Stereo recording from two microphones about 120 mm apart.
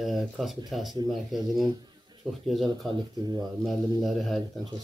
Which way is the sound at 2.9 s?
35° right (ahead or behind).